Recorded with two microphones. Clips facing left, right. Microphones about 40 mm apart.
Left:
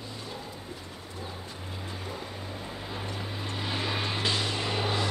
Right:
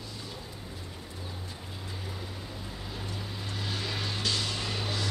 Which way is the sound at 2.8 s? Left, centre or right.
Left.